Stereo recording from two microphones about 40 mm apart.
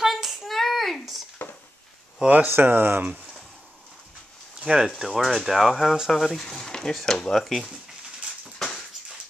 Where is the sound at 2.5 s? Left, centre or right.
Right.